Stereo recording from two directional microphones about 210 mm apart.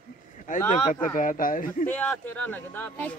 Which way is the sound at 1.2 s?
40° left (ahead or behind).